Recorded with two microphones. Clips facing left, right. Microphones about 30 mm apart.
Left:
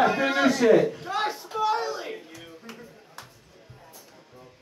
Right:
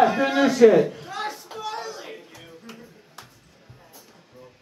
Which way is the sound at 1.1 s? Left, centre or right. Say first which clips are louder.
Left 3 dB; centre.